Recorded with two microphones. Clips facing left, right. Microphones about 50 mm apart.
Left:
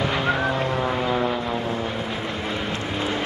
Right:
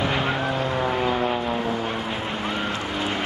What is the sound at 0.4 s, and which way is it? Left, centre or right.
Vehicle, left.